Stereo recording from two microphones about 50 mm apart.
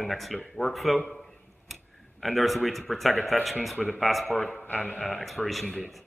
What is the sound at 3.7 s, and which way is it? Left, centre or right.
Speech, left.